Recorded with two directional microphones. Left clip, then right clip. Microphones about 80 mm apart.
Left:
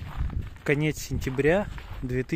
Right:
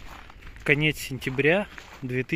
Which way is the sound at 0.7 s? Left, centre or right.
Centre.